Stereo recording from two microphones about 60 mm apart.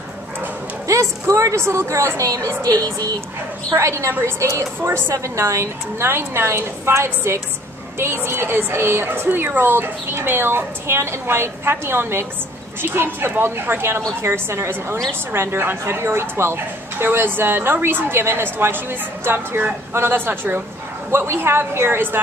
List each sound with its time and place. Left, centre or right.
0.8 s a woman's voice: right
2.2 s a woman's voice: right
3.7 s a woman's voice: right